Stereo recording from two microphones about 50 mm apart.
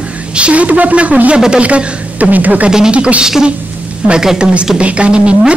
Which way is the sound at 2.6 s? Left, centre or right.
Centre.